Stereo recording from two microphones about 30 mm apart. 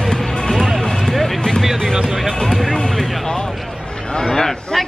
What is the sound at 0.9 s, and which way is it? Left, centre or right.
Vehicle, centre.